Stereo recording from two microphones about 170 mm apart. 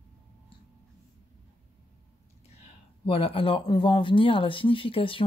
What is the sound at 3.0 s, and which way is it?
Speech, 30° left (ahead or behind).